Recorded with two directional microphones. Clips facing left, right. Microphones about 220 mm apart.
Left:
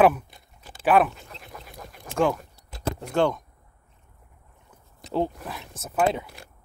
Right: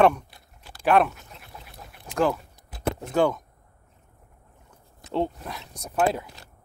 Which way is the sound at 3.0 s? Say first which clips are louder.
Even; 5° right (ahead or behind).